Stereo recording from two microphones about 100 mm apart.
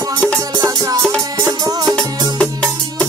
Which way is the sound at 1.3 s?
40° right (ahead or behind).